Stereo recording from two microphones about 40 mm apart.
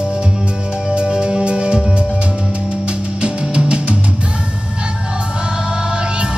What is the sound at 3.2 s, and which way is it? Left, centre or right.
Music, right.